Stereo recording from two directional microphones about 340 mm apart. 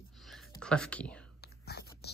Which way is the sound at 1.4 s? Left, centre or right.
Left.